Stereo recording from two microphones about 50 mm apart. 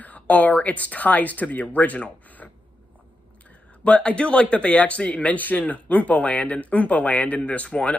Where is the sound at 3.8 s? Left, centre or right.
Left.